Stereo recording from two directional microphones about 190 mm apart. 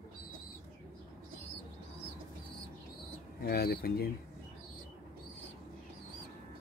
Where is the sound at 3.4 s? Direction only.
55° left (ahead or behind).